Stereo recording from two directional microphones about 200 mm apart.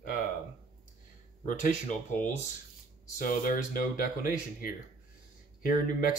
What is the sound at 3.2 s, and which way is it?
Speech, 45° left (ahead or behind).